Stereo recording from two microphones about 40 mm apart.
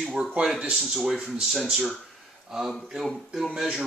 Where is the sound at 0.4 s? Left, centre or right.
Right.